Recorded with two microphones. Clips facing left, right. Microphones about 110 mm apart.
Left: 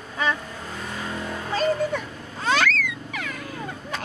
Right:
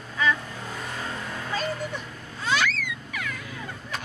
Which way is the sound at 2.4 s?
40° left (ahead or behind).